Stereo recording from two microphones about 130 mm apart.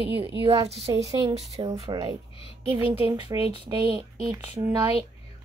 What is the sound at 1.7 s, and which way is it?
Speech, 30° right (ahead or behind).